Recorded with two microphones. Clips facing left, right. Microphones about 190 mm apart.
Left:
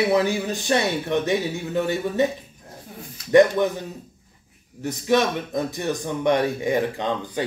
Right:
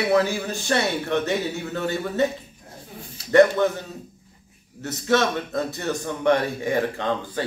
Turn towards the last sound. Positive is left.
turn(degrees=15)  # may be behind; listen again after turning